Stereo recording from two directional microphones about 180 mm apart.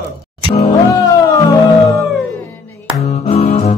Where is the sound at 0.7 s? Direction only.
20° left (ahead or behind).